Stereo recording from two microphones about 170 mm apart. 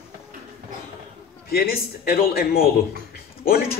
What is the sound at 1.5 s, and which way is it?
Speech, 65° left (ahead or behind).